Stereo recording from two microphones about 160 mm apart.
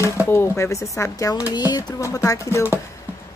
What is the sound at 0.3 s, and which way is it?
Speech, 15° left (ahead or behind).